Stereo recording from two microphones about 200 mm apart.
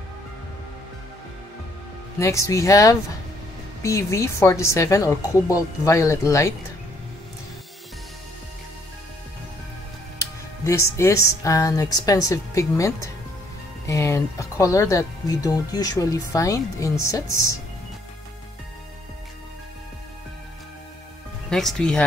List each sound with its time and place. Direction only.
2.1 s speech: 15° left (ahead or behind)
10.1 s speech: 15° left (ahead or behind)
21.5 s speech: centre (ahead or behind)